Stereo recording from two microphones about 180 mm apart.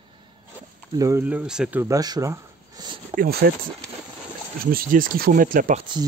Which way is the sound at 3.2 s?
60° right (ahead or behind).